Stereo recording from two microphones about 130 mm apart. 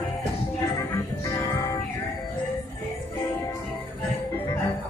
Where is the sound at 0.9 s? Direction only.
25° left (ahead or behind).